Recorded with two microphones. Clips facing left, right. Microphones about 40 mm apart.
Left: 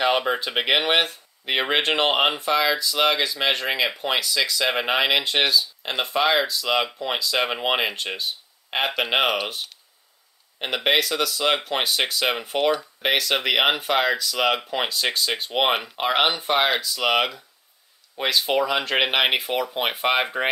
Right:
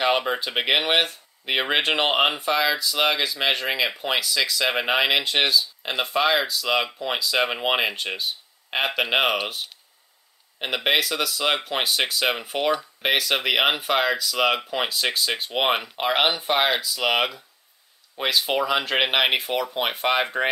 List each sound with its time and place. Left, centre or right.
0.0 s speech: centre